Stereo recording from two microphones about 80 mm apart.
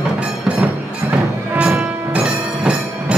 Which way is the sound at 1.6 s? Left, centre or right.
Centre.